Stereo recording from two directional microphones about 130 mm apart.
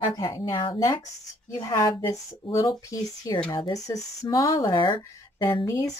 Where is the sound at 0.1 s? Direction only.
30° left (ahead or behind).